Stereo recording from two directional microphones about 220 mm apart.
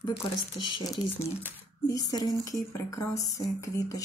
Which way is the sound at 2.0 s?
15° left (ahead or behind).